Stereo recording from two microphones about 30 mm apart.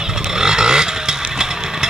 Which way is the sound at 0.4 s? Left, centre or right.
Right.